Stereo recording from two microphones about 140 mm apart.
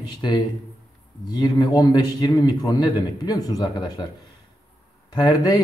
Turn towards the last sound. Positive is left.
turn(degrees=30)  # may be behind; listen again after turning